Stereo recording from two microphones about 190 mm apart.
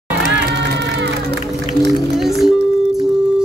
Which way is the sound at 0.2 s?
65° right (ahead or behind).